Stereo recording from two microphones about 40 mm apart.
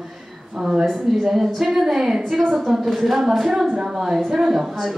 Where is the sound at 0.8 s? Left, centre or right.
Centre.